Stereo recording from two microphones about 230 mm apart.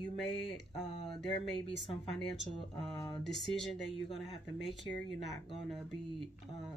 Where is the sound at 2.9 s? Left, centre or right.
Centre.